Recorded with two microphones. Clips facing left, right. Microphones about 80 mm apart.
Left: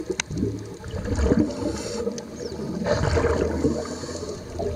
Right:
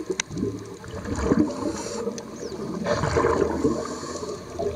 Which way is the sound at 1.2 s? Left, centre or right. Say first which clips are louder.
Even; right.